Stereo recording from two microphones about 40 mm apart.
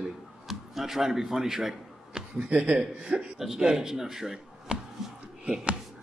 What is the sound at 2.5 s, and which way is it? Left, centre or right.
Speech, right.